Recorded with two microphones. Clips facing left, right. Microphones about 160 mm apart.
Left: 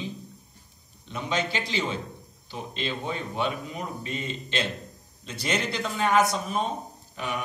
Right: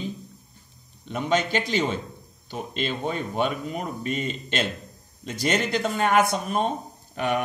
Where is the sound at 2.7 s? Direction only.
50° right (ahead or behind).